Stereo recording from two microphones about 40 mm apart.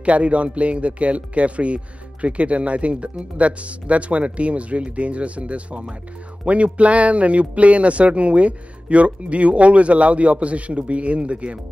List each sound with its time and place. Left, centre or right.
0.0 s speech: right